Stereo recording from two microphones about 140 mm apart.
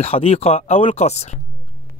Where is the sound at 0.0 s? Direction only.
45° left (ahead or behind).